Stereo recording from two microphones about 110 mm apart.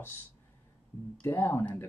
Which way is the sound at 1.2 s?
20° left (ahead or behind).